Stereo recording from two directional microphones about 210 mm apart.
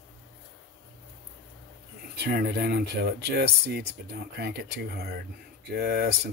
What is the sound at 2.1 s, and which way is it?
Speech, 50° right (ahead or behind).